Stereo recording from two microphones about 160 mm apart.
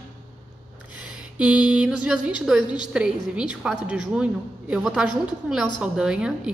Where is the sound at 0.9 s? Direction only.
5° right (ahead or behind).